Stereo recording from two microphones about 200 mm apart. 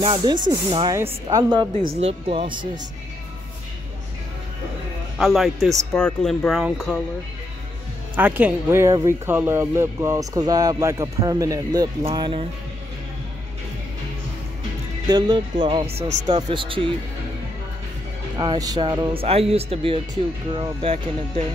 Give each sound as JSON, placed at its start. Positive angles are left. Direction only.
{"t": 0.0, "sound": "speech", "side_deg": -25}
{"t": 1.7, "sound": "speech", "side_deg": -40}
{"t": 5.1, "sound": "speech", "side_deg": 0}
{"t": 8.2, "sound": "speech", "side_deg": -10}
{"t": 15.0, "sound": "speech", "side_deg": -20}
{"t": 18.4, "sound": "speech", "side_deg": -20}